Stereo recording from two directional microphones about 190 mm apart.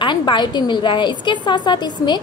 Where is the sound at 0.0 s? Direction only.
25° left (ahead or behind).